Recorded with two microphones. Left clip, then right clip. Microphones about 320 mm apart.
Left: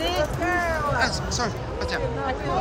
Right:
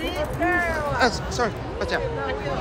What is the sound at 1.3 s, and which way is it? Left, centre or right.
Speech, centre.